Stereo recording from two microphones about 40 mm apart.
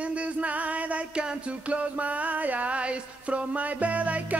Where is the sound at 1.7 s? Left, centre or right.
Right.